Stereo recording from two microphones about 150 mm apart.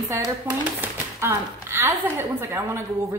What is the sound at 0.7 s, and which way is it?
Speech, 15° right (ahead or behind).